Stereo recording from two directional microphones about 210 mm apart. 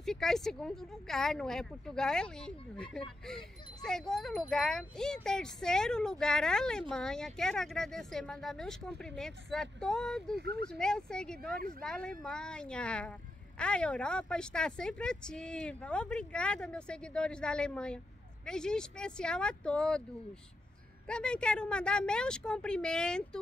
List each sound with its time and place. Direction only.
0.0 s speech: centre (ahead or behind)
10.3 s speech: 50° right (ahead or behind)
10.7 s speech: 5° left (ahead or behind)
21.1 s speech: 5° left (ahead or behind)